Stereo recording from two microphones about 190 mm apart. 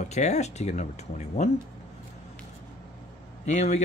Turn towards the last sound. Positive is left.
turn(degrees=40)  # may be behind; listen again after turning